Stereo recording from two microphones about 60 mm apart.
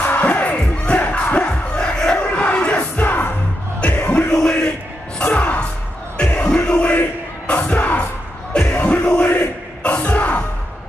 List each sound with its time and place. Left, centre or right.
0.0 s crowd: left
3.8 s music: left